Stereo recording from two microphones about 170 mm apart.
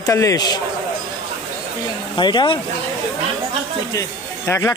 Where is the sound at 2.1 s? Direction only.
25° left (ahead or behind).